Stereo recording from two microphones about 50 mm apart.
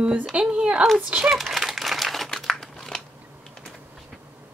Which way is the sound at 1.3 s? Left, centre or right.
Centre.